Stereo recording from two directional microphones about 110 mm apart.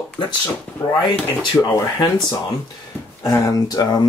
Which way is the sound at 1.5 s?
30° left (ahead or behind).